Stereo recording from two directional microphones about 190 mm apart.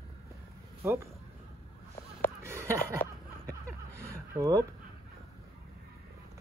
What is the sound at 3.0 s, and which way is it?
Snicker, 10° left (ahead or behind).